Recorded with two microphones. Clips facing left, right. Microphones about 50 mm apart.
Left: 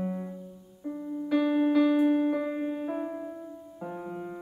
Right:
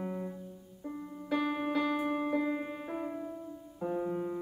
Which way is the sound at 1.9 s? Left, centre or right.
Left.